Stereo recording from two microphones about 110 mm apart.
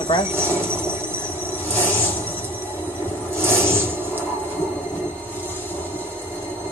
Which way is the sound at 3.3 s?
20° right (ahead or behind).